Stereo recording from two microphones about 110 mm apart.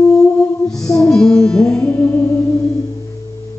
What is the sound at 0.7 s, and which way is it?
Music, 5° left (ahead or behind).